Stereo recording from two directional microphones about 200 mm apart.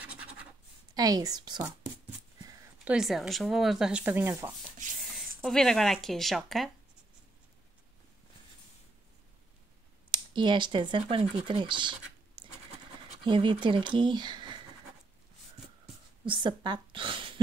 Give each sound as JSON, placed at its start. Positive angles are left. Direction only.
{"t": 0.0, "sound": "scratch", "side_deg": -5}
{"t": 0.9, "sound": "speech", "side_deg": -20}
{"t": 2.8, "sound": "speech", "side_deg": -5}
{"t": 5.1, "sound": "speech", "side_deg": 0}
{"t": 10.1, "sound": "speech", "side_deg": -25}
{"t": 16.3, "sound": "speech", "side_deg": -25}